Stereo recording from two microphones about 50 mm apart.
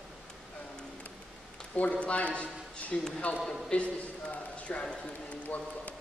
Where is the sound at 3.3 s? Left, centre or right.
Left.